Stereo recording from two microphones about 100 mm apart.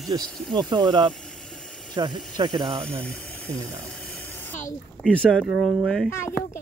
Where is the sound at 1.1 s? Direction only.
5° left (ahead or behind).